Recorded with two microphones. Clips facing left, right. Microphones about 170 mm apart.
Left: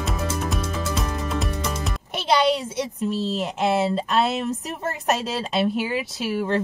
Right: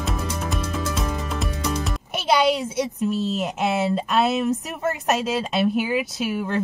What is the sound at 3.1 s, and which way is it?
Speech, 35° left (ahead or behind).